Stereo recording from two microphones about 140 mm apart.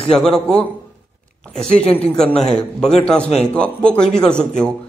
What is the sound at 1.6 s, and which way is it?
A man's voice, 5° left (ahead or behind).